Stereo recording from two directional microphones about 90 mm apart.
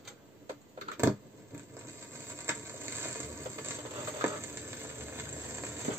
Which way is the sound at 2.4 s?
25° right (ahead or behind).